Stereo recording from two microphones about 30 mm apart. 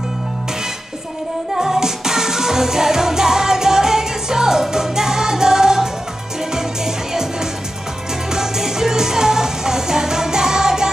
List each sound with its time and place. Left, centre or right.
1.5 s music: centre